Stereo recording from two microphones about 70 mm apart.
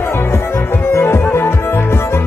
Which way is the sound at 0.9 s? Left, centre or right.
Left.